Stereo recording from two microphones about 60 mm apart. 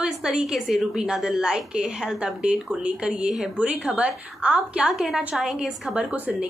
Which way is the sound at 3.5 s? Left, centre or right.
Centre.